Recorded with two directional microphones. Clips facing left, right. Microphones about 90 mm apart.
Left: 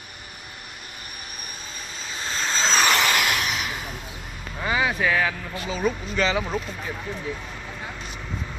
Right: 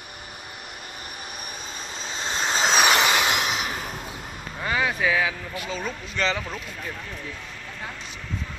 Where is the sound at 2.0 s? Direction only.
20° right (ahead or behind).